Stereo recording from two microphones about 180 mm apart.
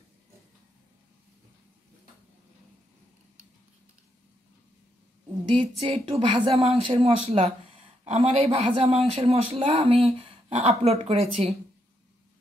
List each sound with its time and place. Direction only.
5.5 s speech: 30° right (ahead or behind)